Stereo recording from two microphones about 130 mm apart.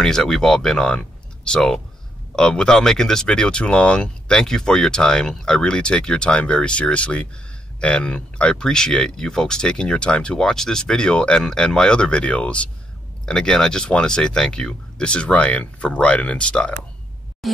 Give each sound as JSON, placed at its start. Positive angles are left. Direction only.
{"t": 0.0, "sound": "speech", "side_deg": 5}